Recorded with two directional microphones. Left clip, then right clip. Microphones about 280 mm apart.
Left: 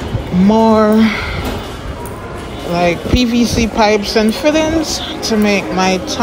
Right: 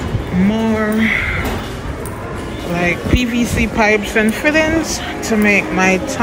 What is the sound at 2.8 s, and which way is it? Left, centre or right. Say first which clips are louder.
Speech: left 3 dB; left.